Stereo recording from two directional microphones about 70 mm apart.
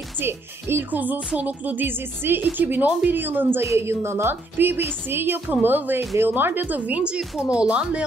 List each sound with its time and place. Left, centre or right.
0.2 s speech: right
0.9 s a woman's voice: right